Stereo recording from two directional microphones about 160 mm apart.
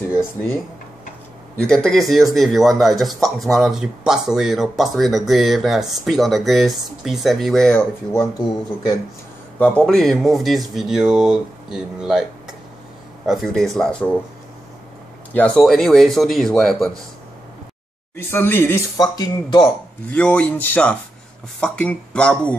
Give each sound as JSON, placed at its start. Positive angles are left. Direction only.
{"t": 0.1, "sound": "speech", "side_deg": 15}
{"t": 1.6, "sound": "speech", "side_deg": 5}
{"t": 9.6, "sound": "speech", "side_deg": 5}
{"t": 15.3, "sound": "speech", "side_deg": 5}
{"t": 18.1, "sound": "speech", "side_deg": 15}
{"t": 18.9, "sound": "speech", "side_deg": 25}
{"t": 19.6, "sound": "speech", "side_deg": 5}